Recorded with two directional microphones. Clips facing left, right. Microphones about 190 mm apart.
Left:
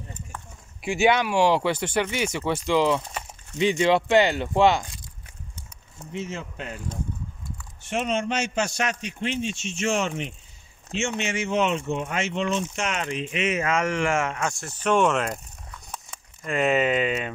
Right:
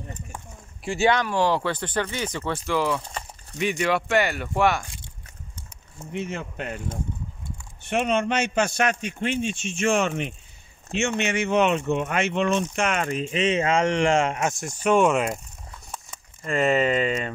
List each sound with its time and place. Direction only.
0.8 s speech: 15° left (ahead or behind)
6.1 s speech: 60° right (ahead or behind); by 15.4 s 5° right (ahead or behind)
15.9 s a sound: centre (ahead or behind)